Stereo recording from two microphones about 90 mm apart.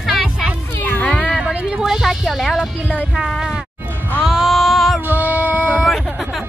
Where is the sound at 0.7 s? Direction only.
20° left (ahead or behind).